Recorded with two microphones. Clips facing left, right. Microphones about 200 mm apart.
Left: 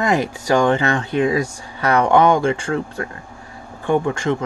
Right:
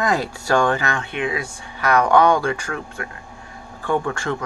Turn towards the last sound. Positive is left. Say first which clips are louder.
# left 4 dB
turn(degrees=20)  # may be behind; listen again after turning